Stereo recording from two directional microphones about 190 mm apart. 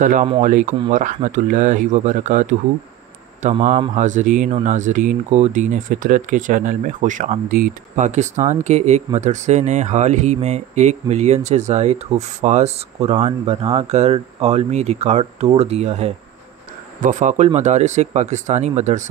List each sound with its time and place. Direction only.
0.0 s speech: 45° right (ahead or behind)
3.4 s speech: 40° right (ahead or behind)